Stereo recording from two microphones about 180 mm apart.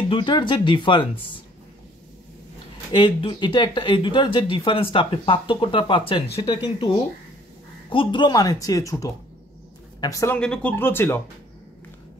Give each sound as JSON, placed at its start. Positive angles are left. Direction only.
{"t": 0.1, "sound": "speech", "side_deg": 25}
{"t": 2.9, "sound": "speech", "side_deg": 30}
{"t": 7.9, "sound": "speech", "side_deg": 25}